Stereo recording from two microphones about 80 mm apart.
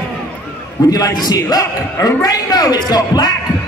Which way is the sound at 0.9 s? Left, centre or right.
Left.